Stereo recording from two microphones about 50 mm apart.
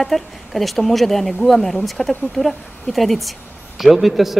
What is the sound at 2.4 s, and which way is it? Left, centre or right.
Speech, centre.